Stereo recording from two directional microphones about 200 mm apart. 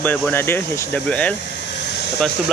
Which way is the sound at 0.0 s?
10° left (ahead or behind).